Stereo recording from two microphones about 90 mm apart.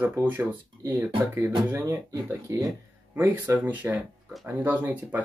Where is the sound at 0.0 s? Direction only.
25° right (ahead or behind).